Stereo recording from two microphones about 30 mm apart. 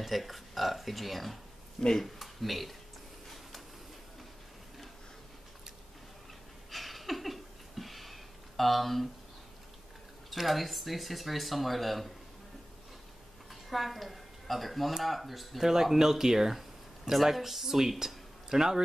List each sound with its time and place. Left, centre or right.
0.0 s speech: centre
1.8 s speech: left
2.1 s speech: centre
6.7 s a sound: centre
10.3 s speech: centre
13.5 s speech: centre
15.6 s speech: centre